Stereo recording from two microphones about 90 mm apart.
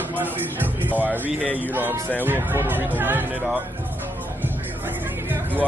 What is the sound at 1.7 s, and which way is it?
Speech, 20° right (ahead or behind).